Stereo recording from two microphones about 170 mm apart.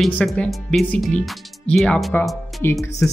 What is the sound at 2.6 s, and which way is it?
Speech, 15° left (ahead or behind).